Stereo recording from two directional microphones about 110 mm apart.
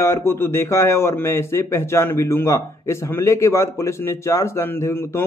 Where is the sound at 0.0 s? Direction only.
25° left (ahead or behind).